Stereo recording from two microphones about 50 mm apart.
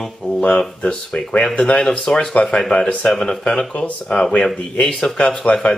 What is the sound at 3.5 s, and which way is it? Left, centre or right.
Speech, left.